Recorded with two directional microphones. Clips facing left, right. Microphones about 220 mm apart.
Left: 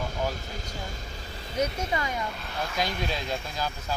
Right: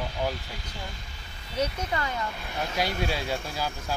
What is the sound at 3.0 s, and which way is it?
Speech, 10° right (ahead or behind).